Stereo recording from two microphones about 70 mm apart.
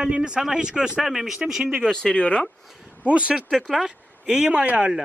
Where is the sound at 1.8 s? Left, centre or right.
Centre.